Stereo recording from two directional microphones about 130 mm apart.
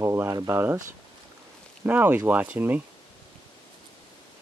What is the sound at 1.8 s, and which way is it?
Speech, 15° right (ahead or behind).